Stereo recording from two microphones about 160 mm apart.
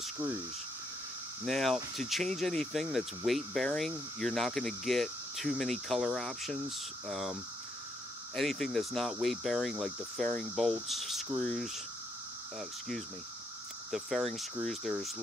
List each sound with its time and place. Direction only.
1.4 s speech: centre (ahead or behind)
8.4 s speech: centre (ahead or behind)
13.9 s speech: centre (ahead or behind)